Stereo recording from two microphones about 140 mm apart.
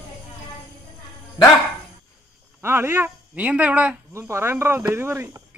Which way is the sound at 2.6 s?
15° right (ahead or behind).